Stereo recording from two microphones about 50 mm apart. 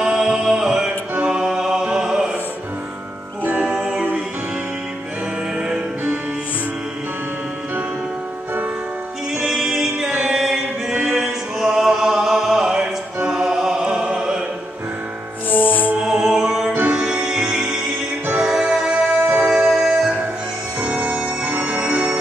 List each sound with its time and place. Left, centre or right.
0.0 s music: centre
1.2 s mantra: centre
1.9 s music: centre
3.4 s music: right
9.3 s music: centre
13.3 s choir: centre
13.8 s opera: centre
15.5 s music: left
16.0 s music: centre
16.9 s music: centre
21.5 s music: right
21.7 s music: right